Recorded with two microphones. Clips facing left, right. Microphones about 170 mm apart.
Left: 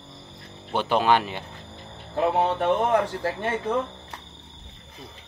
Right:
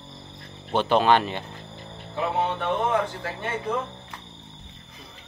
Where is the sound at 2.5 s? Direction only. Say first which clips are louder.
Left 3 dB; 40° left (ahead or behind).